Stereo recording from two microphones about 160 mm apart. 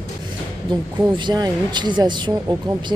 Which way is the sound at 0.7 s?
30° right (ahead or behind).